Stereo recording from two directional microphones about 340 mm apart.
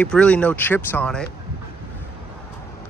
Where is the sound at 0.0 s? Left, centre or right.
Centre.